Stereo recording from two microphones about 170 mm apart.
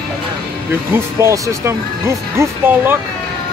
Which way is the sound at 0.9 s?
15° right (ahead or behind).